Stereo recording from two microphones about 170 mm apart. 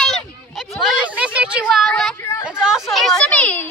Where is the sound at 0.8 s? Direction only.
10° right (ahead or behind).